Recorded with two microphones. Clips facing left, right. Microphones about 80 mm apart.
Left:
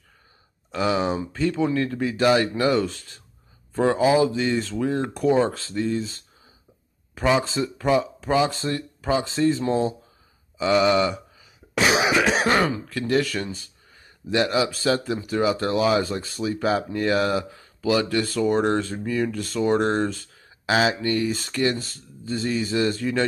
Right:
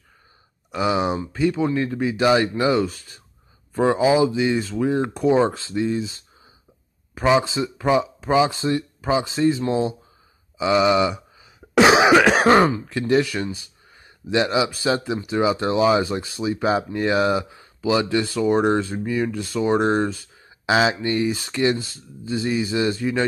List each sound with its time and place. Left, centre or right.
0.7 s speech: centre
11.7 s cough: right
12.4 s speech: right